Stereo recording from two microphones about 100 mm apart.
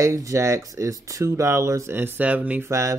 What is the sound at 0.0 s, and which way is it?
Speech, 30° right (ahead or behind).